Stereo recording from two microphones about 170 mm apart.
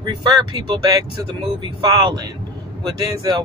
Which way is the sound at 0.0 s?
25° right (ahead or behind).